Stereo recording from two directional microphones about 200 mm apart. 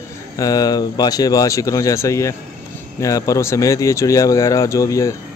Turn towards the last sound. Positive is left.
turn(degrees=15)  # may be behind; listen again after turning